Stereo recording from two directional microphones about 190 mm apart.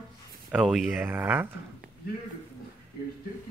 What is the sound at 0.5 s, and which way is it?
Speech, centre (ahead or behind).